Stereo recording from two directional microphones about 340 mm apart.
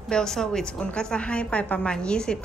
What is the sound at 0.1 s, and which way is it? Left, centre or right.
A woman's voice, centre.